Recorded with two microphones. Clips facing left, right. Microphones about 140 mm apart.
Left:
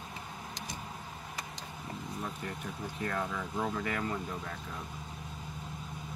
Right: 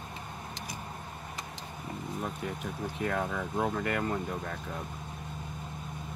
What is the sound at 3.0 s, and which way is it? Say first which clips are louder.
Speech: right 3 dB; 65° right (ahead or behind).